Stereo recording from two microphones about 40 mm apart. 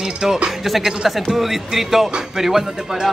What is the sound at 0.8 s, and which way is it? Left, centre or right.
Music, centre.